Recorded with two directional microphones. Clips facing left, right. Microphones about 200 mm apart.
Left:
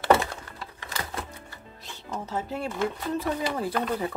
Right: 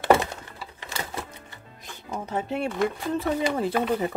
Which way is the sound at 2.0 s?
15° right (ahead or behind).